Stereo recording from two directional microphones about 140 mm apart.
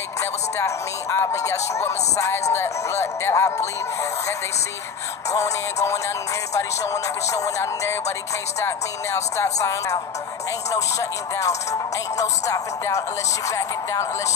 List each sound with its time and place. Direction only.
0.2 s speech: 20° left (ahead or behind)
5.3 s speech: 20° left (ahead or behind)